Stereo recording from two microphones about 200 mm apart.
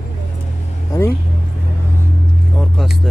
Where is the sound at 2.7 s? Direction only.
Centre (ahead or behind).